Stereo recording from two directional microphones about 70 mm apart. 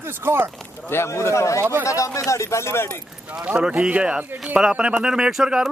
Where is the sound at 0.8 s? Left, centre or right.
Left.